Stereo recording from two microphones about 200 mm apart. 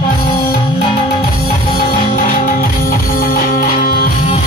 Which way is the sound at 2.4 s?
45° left (ahead or behind).